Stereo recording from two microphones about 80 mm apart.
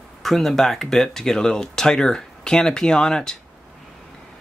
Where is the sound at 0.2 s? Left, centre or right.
Centre.